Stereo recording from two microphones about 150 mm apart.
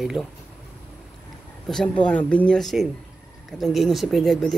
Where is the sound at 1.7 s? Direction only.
5° left (ahead or behind).